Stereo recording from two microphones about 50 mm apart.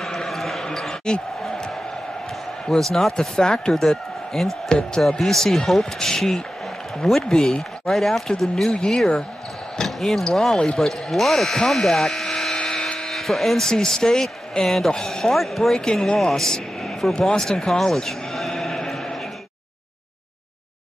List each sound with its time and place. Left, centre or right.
0.0 s basketball bounce: centre
0.7 s basketball bounce: centre
2.8 s a man's voice: centre
3.7 s a man's voice: centre
4.7 s a man's voice: centre
15.3 s a man's voice: centre
18.3 s a sound: centre